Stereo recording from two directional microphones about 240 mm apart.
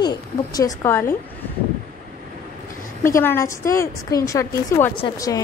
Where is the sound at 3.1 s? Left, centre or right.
Centre.